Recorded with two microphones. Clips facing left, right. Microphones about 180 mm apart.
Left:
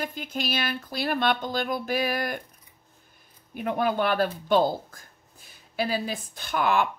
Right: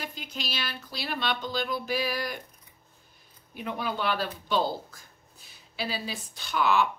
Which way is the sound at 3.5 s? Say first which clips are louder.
Left 7 dB; 50° left (ahead or behind).